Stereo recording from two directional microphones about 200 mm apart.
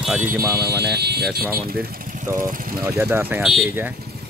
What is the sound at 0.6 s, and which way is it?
Speech, 55° right (ahead or behind).